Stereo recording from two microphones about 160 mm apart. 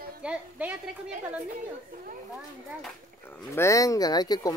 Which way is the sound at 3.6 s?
20° left (ahead or behind).